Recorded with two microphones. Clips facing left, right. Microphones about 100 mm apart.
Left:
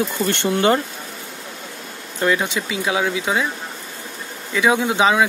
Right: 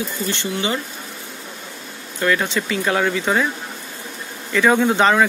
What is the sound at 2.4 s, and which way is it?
Speech, 10° left (ahead or behind).